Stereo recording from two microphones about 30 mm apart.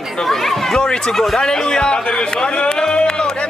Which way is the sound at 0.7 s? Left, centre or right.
Left.